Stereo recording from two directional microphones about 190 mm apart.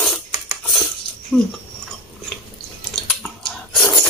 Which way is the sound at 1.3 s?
10° right (ahead or behind).